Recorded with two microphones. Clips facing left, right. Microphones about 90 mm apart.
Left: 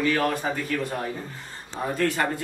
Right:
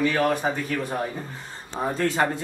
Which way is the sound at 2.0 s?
25° right (ahead or behind).